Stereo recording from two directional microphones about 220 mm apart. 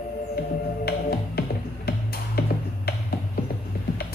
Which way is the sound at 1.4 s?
45° left (ahead or behind).